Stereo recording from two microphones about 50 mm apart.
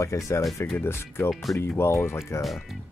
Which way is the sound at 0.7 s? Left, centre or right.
Left.